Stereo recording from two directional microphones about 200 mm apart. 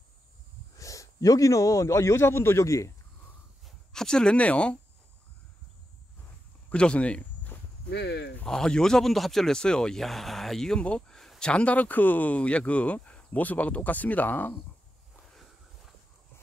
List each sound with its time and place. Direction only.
0.7 s a man's voice: 15° left (ahead or behind)
3.6 s speech: centre (ahead or behind)
6.7 s walk: 5° left (ahead or behind)
7.9 s speech: 55° left (ahead or behind)
8.4 s speech: 5° left (ahead or behind)